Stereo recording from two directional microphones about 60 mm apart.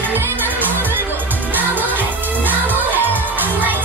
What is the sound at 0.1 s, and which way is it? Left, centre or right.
Music, right.